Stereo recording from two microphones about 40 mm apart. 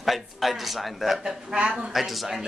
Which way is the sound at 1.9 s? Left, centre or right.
Centre.